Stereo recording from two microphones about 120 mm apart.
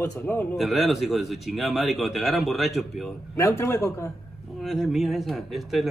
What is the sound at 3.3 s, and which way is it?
Speech, 20° left (ahead or behind).